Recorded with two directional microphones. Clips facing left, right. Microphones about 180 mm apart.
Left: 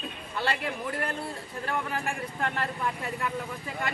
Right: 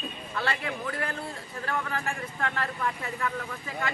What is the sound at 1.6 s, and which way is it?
Speech, 15° left (ahead or behind).